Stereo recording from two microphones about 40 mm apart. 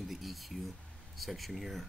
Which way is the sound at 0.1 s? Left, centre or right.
Centre.